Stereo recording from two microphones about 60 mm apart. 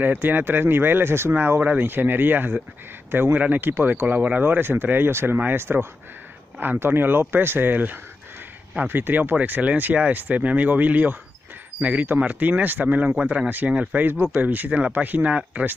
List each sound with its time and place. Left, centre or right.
0.0 s speech: right
14.0 s speech: right